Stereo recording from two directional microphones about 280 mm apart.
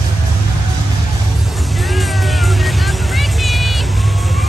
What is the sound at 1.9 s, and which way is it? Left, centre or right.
Music, centre.